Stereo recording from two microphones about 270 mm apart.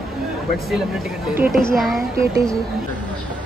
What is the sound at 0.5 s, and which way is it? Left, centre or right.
A woman's voice, centre.